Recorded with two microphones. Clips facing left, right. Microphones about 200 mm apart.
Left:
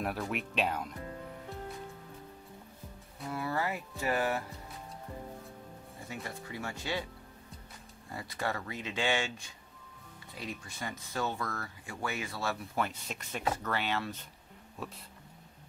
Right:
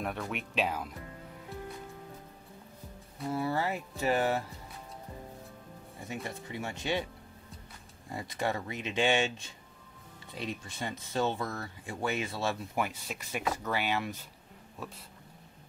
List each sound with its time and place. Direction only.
0.0 s speech: centre (ahead or behind)
3.3 s speech: 25° right (ahead or behind)
6.0 s speech: 20° right (ahead or behind)
8.1 s speech: 20° right (ahead or behind)
12.7 s speech: 10° right (ahead or behind)